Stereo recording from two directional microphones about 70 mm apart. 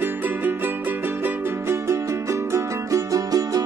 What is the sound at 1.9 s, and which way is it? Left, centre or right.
Music, right.